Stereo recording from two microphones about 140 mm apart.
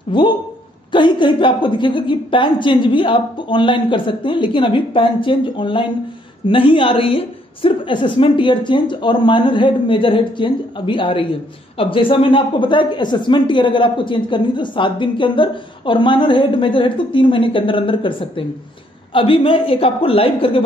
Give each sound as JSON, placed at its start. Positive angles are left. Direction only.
{"t": 0.1, "sound": "a woman's voice", "side_deg": 35}